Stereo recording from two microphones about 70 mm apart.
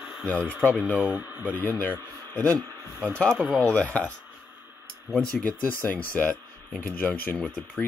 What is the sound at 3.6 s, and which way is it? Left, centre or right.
Speech, centre.